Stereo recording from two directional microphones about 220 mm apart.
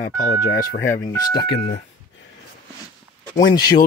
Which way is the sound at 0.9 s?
15° left (ahead or behind).